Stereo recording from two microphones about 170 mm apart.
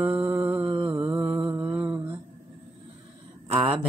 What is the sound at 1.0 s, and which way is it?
Mantra, 10° right (ahead or behind).